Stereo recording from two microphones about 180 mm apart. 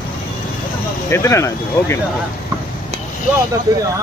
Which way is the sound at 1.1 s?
15° left (ahead or behind).